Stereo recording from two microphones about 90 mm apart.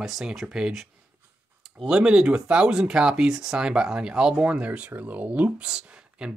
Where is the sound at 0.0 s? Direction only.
5° right (ahead or behind).